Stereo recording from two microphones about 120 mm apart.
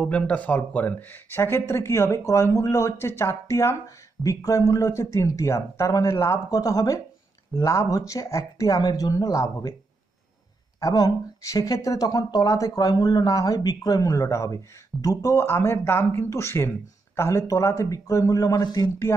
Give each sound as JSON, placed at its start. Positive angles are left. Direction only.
{"t": 0.0, "sound": "speech", "side_deg": 10}
{"t": 10.8, "sound": "speech", "side_deg": 30}